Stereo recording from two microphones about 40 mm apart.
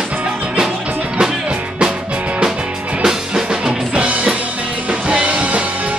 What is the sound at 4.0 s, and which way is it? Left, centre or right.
Music, right.